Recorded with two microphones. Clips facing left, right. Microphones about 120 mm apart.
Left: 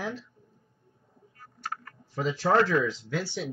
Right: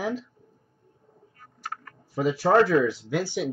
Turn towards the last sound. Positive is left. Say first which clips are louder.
# right 5 dB
turn(degrees=-15)  # may be behind; listen again after turning